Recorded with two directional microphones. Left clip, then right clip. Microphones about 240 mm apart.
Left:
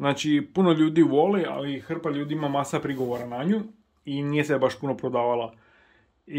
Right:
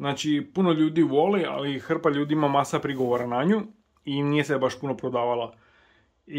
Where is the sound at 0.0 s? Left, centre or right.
Centre.